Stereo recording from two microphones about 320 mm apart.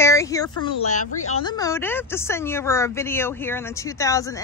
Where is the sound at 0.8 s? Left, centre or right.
Left.